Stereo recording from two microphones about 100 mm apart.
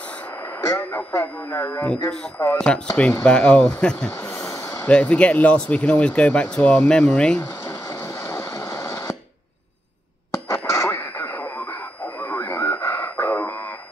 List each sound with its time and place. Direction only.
0.4 s radio: 25° left (ahead or behind)
1.5 s speech: 25° left (ahead or behind)
1.9 s speech: 5° left (ahead or behind)
2.3 s speech: 30° left (ahead or behind)
3.0 s speech: 10° left (ahead or behind)
4.1 s a sound: 20° left (ahead or behind)
4.8 s speech: 15° left (ahead or behind)
8.0 s a sound: 25° left (ahead or behind)
10.5 s radio: 25° left (ahead or behind)
13.1 s a sound: 15° left (ahead or behind)